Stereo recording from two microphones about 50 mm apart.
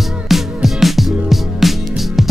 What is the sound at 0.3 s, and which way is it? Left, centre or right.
Music, centre.